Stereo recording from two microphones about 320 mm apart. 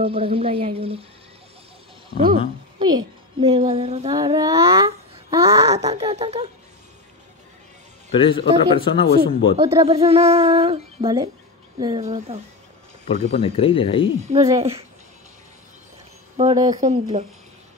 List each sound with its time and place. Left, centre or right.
0.0 s speech: centre
2.0 s a sound: centre
2.8 s speech: centre
8.1 s a man's voice: centre
9.6 s a woman's voice: centre
13.4 s a man's voice: centre
14.2 s speech: centre
16.3 s a woman's voice: centre